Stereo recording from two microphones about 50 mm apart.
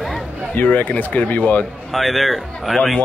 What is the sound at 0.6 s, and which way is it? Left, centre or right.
Speech, left.